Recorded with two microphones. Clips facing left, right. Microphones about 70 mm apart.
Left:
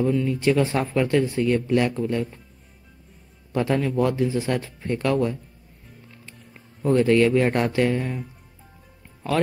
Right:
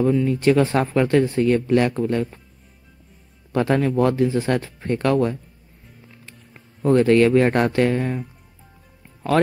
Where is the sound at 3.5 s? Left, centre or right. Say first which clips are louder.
Right 3 dB; right.